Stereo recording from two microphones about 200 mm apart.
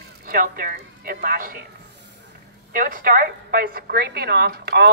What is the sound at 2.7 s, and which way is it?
A woman's voice, 45° right (ahead or behind).